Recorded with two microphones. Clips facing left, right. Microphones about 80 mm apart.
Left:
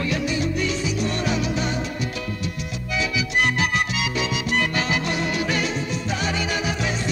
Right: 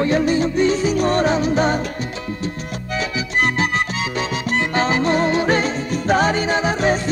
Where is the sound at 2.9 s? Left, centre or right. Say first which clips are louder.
Right 2 dB; right.